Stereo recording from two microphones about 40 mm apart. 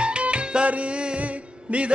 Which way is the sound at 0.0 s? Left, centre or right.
Right.